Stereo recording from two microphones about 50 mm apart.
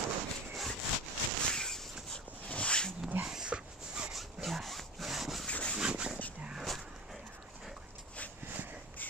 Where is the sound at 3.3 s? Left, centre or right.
Centre.